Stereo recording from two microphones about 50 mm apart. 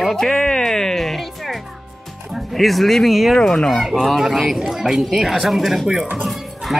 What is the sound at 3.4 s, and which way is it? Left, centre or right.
Speech, centre.